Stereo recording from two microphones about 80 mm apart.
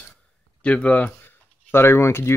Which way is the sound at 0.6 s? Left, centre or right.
Centre.